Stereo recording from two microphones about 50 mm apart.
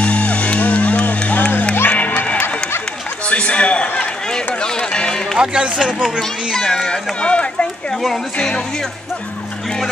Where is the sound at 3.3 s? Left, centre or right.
Left.